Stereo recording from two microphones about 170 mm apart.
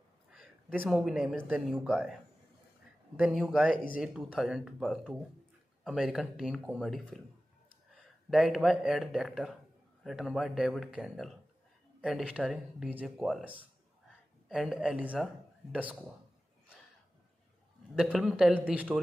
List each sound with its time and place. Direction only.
0.3 s a man's voice: 5° right (ahead or behind)
1.5 s speech: 5° right (ahead or behind)
3.2 s speech: 5° right (ahead or behind)
3.7 s speech: 55° left (ahead or behind)
4.0 s speech: 5° right (ahead or behind)
8.3 s speech: centre (ahead or behind)
17.9 s speech: 5° right (ahead or behind)